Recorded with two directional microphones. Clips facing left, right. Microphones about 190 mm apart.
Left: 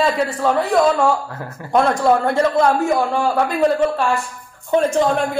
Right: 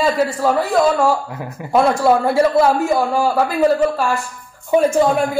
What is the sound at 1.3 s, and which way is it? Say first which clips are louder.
Speech: right 2 dB; 15° right (ahead or behind).